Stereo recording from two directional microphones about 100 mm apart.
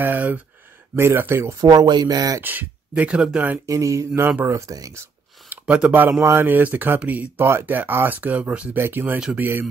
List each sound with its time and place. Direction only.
0.0 s a sound: 20° right (ahead or behind)
0.9 s speech: 25° right (ahead or behind)
1.6 s speech: 40° right (ahead or behind)
2.4 s speech: 15° right (ahead or behind)
3.6 s speech: 35° right (ahead or behind)
5.5 s speech: 15° right (ahead or behind)
6.0 s speech: 25° right (ahead or behind)